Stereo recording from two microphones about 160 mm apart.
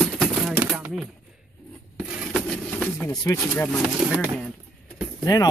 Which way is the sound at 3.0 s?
15° left (ahead or behind).